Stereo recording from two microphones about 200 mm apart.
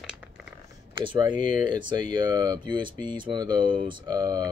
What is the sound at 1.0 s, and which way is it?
Speech, 25° right (ahead or behind).